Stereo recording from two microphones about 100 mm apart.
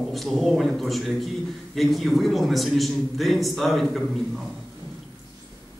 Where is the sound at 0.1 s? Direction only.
Centre (ahead or behind).